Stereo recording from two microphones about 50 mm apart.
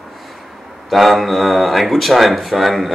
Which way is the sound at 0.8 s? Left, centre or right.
Centre.